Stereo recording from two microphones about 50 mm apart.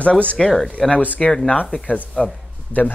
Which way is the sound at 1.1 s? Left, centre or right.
Centre.